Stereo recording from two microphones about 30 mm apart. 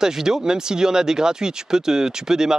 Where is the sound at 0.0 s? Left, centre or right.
Centre.